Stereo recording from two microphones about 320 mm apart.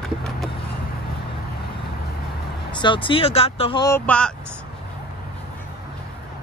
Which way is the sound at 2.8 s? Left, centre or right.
Centre.